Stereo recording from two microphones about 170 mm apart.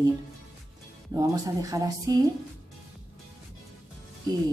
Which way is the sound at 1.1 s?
20° right (ahead or behind).